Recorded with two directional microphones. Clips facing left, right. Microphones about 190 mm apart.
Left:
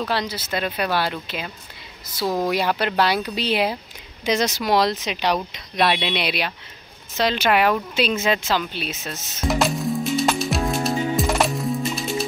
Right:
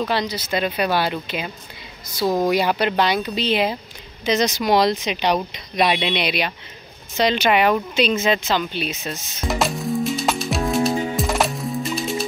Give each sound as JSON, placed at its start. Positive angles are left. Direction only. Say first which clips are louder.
{"t": 0.1, "sound": "speech", "louder": "right 2 dB", "side_deg": 5}
{"t": 2.2, "sound": "speech", "louder": "right 3 dB", "side_deg": -15}
{"t": 2.5, "sound": "speech", "louder": "right 2 dB", "side_deg": 0}
{"t": 9.1, "sound": "music", "louder": "left 2 dB", "side_deg": 0}